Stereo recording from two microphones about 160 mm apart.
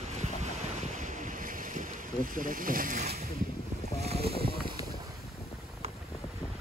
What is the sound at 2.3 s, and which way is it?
Speech, 60° right (ahead or behind).